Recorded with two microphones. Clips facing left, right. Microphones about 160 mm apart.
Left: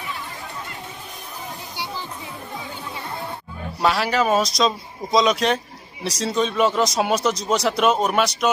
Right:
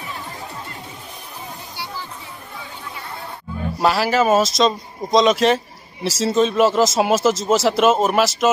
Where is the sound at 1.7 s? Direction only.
15° left (ahead or behind).